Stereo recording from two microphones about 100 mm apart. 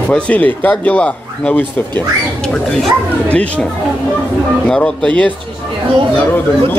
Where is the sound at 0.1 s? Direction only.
15° left (ahead or behind).